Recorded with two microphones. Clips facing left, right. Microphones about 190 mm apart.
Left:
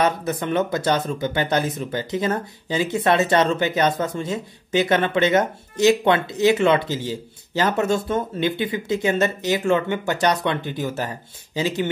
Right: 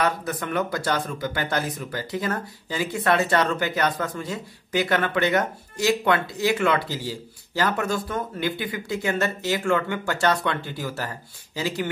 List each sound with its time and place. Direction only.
0.0 s speech: 20° left (ahead or behind)